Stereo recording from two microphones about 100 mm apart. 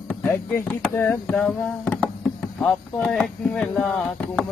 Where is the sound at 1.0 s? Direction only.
15° left (ahead or behind).